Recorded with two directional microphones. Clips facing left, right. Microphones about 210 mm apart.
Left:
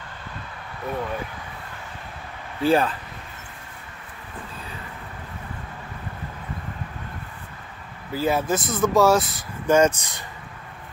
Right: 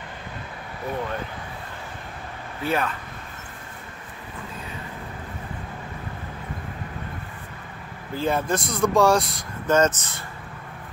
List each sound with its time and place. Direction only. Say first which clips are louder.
2.6 s speech: left 6 dB; 30° left (ahead or behind)
8.1 s speech: left 1 dB; 5° left (ahead or behind)